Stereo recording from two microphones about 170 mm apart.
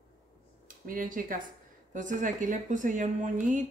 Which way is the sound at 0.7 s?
55° right (ahead or behind).